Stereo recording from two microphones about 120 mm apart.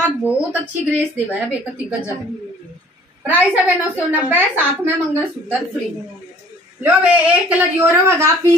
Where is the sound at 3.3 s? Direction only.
15° right (ahead or behind).